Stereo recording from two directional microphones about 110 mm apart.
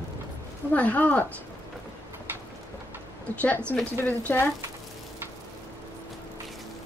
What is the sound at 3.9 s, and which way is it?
Speech, 20° left (ahead or behind).